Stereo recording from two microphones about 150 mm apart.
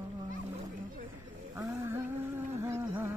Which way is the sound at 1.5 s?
20° right (ahead or behind).